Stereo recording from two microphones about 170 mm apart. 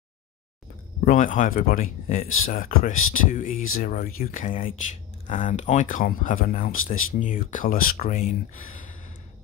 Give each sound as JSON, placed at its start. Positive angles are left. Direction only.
{"t": 1.0, "sound": "speech", "side_deg": 50}